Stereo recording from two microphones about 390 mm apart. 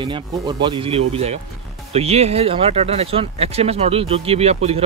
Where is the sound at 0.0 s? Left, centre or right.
Centre.